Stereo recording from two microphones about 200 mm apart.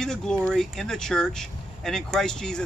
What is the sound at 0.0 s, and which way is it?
Speech, 5° left (ahead or behind).